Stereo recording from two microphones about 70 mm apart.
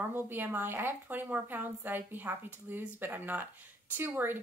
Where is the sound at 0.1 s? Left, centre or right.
Right.